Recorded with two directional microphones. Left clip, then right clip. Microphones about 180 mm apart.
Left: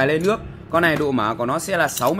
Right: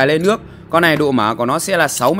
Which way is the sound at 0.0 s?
45° right (ahead or behind).